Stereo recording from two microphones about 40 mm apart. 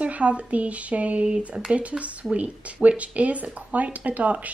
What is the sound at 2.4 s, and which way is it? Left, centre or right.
Speech, right.